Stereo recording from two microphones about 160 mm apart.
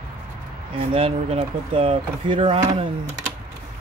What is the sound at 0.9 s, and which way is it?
Speech, 35° right (ahead or behind).